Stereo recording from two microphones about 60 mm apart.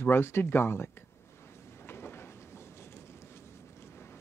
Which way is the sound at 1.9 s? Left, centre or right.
Left.